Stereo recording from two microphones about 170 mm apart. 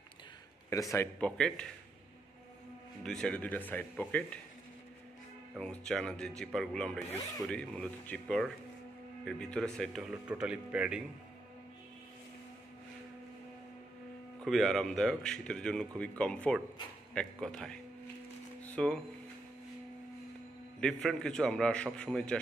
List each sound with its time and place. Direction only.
0.7 s speech: 20° left (ahead or behind)
1.2 s a man's voice: 5° left (ahead or behind)
3.0 s speech: 5° left (ahead or behind)
5.6 s a man's voice: 5° left (ahead or behind)
10.1 s speech: 5° right (ahead or behind)
14.4 s a man's voice: centre (ahead or behind)
18.6 s music: 5° left (ahead or behind)
20.8 s a man's voice: 5° left (ahead or behind)